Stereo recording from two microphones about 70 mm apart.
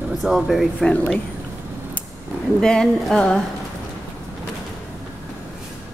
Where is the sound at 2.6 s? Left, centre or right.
Centre.